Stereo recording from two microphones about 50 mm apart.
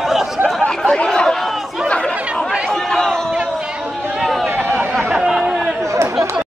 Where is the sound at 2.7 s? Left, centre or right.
Centre.